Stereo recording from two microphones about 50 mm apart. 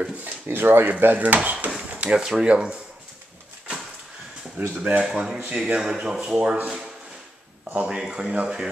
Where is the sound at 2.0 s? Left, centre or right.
Right.